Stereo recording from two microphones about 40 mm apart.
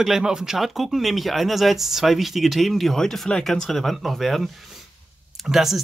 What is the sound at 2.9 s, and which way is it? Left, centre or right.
Speech, centre.